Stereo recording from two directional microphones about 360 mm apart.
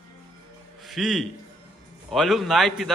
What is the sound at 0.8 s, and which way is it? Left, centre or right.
A man's voice, centre.